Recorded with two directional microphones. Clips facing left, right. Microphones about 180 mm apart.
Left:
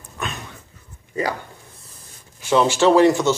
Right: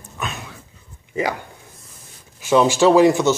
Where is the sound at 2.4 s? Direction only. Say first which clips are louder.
Right 2 dB; 10° right (ahead or behind).